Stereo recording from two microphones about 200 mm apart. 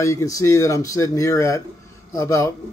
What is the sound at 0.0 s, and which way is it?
Speech, 15° left (ahead or behind).